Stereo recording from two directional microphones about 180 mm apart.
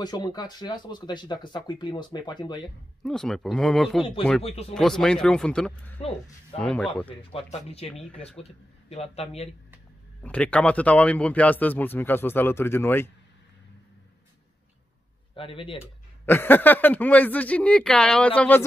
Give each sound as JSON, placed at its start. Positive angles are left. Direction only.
{"t": 0.0, "sound": "speech", "side_deg": 20}
{"t": 3.0, "sound": "speech", "side_deg": 0}
{"t": 4.4, "sound": "speech", "side_deg": 35}
{"t": 4.7, "sound": "speech", "side_deg": 5}
{"t": 7.2, "sound": "speech", "side_deg": 35}
{"t": 9.1, "sound": "speech", "side_deg": 35}
{"t": 10.2, "sound": "speech", "side_deg": 5}
{"t": 15.3, "sound": "speech", "side_deg": 30}
{"t": 16.3, "sound": "speech", "side_deg": 10}